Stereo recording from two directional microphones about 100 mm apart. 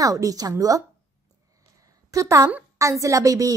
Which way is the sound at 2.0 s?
35° right (ahead or behind).